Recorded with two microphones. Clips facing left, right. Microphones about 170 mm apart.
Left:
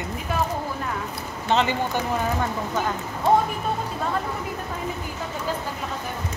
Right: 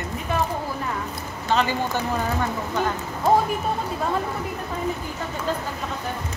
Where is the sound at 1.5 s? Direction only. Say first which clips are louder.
Even; 25° left (ahead or behind).